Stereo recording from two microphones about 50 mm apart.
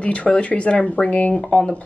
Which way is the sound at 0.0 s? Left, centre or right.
Left.